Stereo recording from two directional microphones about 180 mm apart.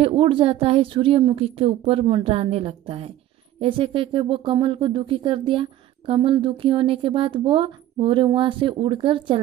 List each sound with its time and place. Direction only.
0.0 s a woman's voice: 30° right (ahead or behind)